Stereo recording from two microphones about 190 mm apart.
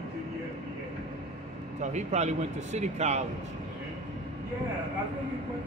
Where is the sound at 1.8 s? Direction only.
40° right (ahead or behind).